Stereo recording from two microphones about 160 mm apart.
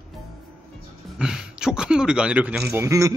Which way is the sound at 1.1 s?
5° right (ahead or behind).